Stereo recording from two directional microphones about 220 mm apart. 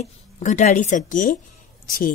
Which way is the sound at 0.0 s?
35° left (ahead or behind).